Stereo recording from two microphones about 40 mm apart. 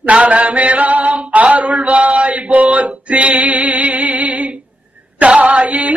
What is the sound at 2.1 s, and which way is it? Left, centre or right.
Male singing, right.